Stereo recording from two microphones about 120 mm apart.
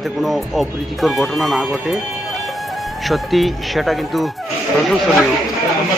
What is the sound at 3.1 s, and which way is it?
Speech, centre (ahead or behind).